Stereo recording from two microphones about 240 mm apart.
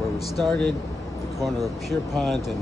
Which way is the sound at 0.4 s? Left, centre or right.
Centre.